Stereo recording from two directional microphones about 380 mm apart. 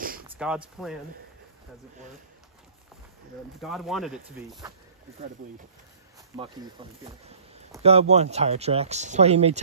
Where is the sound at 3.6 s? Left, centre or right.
Centre.